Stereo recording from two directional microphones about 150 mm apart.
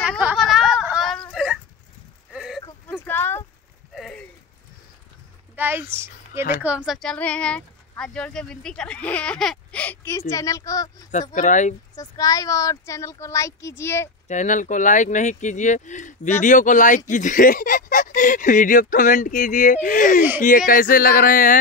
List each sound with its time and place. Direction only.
0.2 s a sound: 5° right (ahead or behind)
2.9 s a sound: 15° left (ahead or behind)
3.9 s a sound: centre (ahead or behind)
5.6 s speech: 15° right (ahead or behind)
6.9 s speech: 5° left (ahead or behind); by 11.1 s 25° left (ahead or behind)
11.3 s speech: 55° left (ahead or behind)
11.9 s speech: 25° left (ahead or behind)
14.2 s speech: 55° left (ahead or behind)
20.2 s speech: 10° right (ahead or behind)
20.4 s speech: 65° left (ahead or behind)